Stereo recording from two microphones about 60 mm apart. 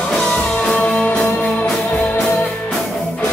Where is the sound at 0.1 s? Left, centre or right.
Centre.